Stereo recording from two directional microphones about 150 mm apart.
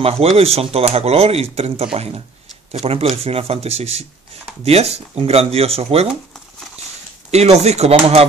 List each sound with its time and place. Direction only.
0.0 s speech: 40° right (ahead or behind)
7.2 s speech: 45° right (ahead or behind)